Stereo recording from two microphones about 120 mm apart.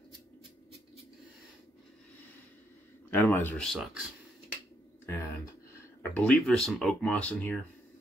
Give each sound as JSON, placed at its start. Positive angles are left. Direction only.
{"t": 3.1, "sound": "speech", "side_deg": 15}
{"t": 3.6, "sound": "speech", "side_deg": 0}
{"t": 5.0, "sound": "a sound", "side_deg": 20}
{"t": 6.0, "sound": "speech", "side_deg": 10}